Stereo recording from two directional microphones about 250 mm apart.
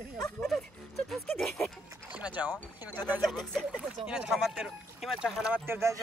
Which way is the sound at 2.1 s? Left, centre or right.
Centre.